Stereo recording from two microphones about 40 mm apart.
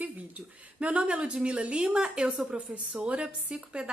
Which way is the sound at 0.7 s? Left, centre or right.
Right.